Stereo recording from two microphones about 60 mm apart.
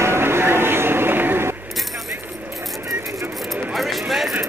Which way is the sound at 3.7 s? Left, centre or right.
Centre.